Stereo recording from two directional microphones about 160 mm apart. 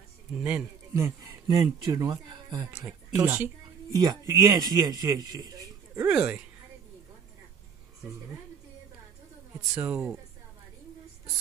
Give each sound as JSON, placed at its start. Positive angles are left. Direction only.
{"t": 0.3, "sound": "speech", "side_deg": -10}
{"t": 0.9, "sound": "speech", "side_deg": -20}
{"t": 5.9, "sound": "speech", "side_deg": -10}
{"t": 9.8, "sound": "speech", "side_deg": -10}